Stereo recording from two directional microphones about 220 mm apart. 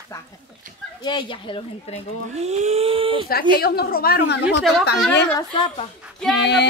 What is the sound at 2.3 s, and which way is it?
Speech, 30° right (ahead or behind).